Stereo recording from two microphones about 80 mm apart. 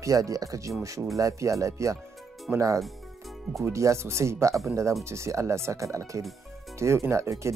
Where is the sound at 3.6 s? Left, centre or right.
Right.